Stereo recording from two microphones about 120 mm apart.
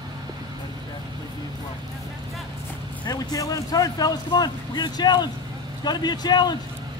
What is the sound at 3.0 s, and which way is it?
Speech, 35° left (ahead or behind).